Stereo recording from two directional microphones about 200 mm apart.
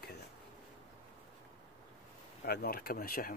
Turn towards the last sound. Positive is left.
turn(degrees=45)  # may be behind; listen again after turning